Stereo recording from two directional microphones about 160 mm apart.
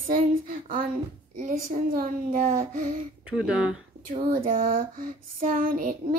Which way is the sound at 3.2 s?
5° right (ahead or behind).